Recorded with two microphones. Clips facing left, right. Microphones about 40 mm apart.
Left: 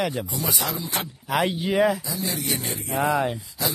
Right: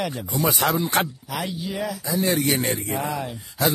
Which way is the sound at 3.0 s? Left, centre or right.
Left.